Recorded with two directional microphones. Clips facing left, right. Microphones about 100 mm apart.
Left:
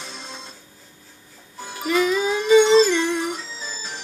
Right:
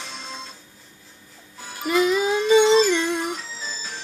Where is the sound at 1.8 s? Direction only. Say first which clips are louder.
Even; 15° right (ahead or behind).